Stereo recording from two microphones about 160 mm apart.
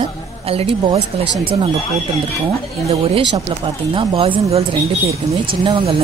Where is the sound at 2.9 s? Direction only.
40° right (ahead or behind).